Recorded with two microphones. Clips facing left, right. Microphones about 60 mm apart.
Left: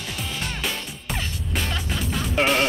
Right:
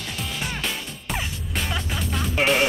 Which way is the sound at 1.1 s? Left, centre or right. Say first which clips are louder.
Even; centre.